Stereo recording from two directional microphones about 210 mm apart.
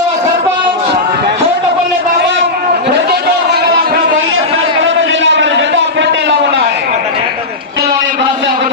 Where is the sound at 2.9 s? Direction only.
50° right (ahead or behind).